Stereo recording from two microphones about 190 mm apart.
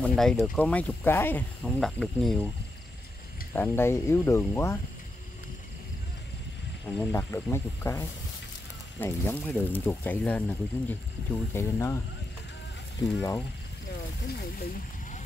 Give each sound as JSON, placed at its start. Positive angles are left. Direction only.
{"t": 0.0, "sound": "speech", "side_deg": 0}
{"t": 3.5, "sound": "speech", "side_deg": 10}
{"t": 7.0, "sound": "speech", "side_deg": 15}
{"t": 13.0, "sound": "speech", "side_deg": 15}
{"t": 14.2, "sound": "speech", "side_deg": 55}